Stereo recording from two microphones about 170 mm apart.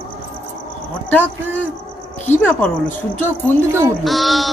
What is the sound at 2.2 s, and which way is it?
Speech, 10° left (ahead or behind).